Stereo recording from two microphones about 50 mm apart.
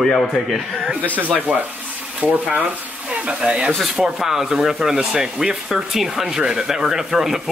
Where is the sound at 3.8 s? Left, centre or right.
Centre.